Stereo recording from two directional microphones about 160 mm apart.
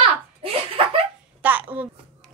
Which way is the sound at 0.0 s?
35° right (ahead or behind).